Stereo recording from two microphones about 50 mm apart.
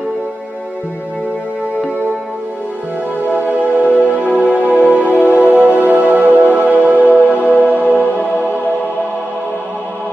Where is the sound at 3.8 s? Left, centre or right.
Left.